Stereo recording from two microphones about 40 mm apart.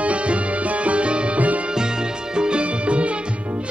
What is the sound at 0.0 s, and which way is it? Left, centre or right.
Music, right.